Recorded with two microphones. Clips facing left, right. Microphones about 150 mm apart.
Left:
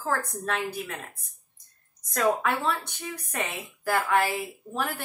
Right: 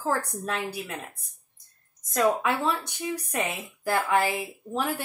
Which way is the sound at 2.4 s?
15° right (ahead or behind).